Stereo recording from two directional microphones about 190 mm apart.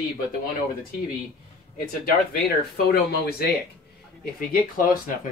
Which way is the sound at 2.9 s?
55° left (ahead or behind).